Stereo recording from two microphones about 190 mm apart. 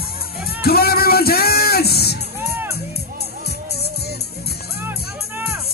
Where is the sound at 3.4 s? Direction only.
55° left (ahead or behind).